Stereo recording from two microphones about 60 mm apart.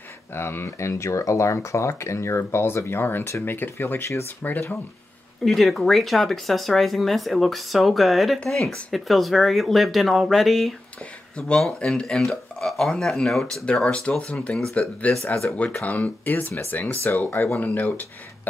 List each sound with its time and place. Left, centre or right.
0.3 s speech: left
4.4 s speech: left
5.4 s speech: centre
11.3 s speech: centre
13.9 s speech: centre